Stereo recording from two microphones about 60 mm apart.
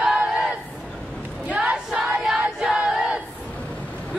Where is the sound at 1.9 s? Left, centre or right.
Centre.